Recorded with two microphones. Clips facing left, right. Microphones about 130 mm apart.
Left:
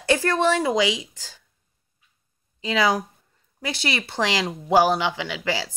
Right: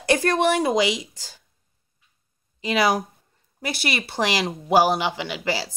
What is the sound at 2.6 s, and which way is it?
Speech, 15° right (ahead or behind).